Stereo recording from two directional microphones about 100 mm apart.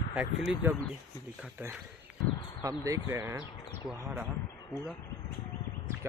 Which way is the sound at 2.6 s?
35° right (ahead or behind).